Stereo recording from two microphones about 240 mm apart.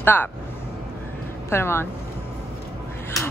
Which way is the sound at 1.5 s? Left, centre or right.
Centre.